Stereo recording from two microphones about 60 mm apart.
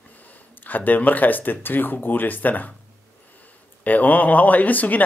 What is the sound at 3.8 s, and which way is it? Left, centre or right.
Speech, left.